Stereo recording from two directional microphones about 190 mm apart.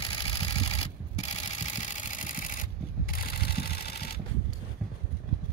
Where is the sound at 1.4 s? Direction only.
35° left (ahead or behind); by 4.2 s 55° left (ahead or behind).